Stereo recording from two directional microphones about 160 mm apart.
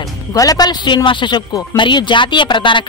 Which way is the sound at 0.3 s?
20° left (ahead or behind).